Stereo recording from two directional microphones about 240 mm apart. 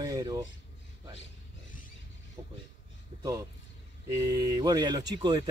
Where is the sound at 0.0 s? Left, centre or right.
Centre.